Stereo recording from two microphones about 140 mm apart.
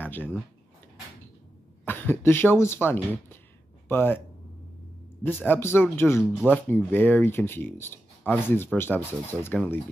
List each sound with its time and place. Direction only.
0.0 s speech: 15° left (ahead or behind)
1.9 s speech: 15° left (ahead or behind)
5.2 s speech: 15° left (ahead or behind)